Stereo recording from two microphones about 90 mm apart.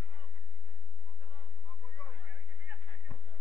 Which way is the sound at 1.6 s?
50° left (ahead or behind).